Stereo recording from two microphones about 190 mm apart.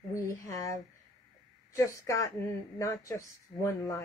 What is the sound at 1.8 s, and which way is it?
Speech, 15° left (ahead or behind).